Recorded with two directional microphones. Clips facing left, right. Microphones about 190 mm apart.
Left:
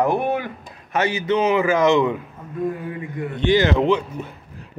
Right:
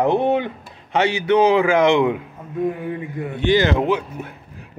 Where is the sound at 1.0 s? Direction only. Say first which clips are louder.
Right 4 dB; 70° right (ahead or behind).